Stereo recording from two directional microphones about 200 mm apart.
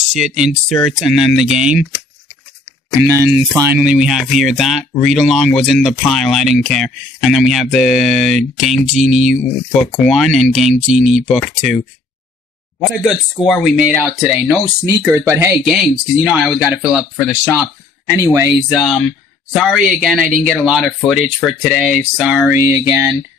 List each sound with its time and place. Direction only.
0.1 s speech: centre (ahead or behind)
2.9 s a sound: 15° right (ahead or behind)
3.5 s speech: 10° right (ahead or behind)
8.8 s speech: 35° right (ahead or behind)
9.3 s speech: 5° left (ahead or behind)
10.9 s speech: 35° right (ahead or behind)
11.1 s speech: centre (ahead or behind)
15.0 s a sound: 15° right (ahead or behind)
15.6 s speech: centre (ahead or behind)
18.7 s speech: centre (ahead or behind)
22.5 s a sound: 10° right (ahead or behind)